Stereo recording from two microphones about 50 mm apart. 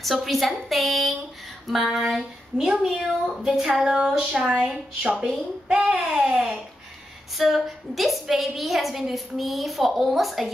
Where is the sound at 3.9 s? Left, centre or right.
Centre.